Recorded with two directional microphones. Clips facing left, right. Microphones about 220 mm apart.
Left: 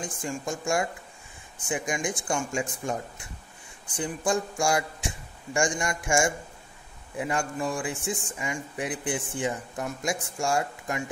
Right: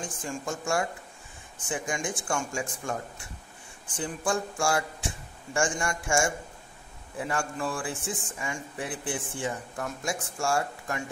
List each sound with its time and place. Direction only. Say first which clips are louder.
0.0 s speech: left 2 dB; 15° left (ahead or behind)